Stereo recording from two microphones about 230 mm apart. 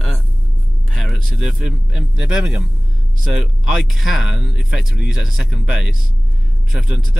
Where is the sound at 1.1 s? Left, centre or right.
Centre.